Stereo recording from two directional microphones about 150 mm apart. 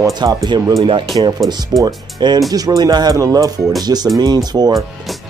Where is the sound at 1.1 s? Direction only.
35° right (ahead or behind).